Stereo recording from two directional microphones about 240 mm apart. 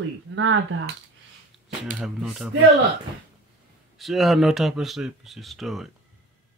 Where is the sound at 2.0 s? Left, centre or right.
Centre.